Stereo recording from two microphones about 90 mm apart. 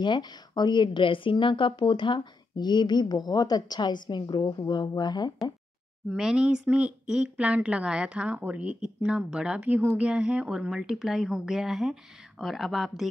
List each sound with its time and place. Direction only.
0.0 s a woman's voice: 55° left (ahead or behind)
6.0 s speech: 10° right (ahead or behind)